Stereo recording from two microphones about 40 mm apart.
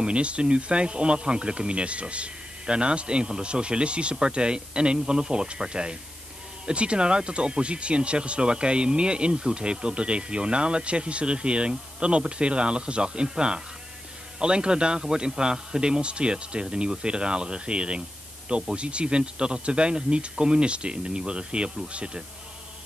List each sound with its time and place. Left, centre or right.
0.0 s speech: right